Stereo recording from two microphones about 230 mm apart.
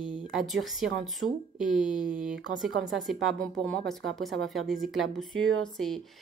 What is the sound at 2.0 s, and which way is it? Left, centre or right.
Speech, right.